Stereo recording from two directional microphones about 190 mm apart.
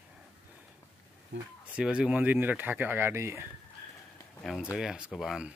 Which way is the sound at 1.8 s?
5° right (ahead or behind).